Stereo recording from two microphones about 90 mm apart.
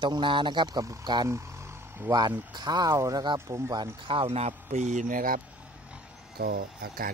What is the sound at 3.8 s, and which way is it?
Speech, 90° right.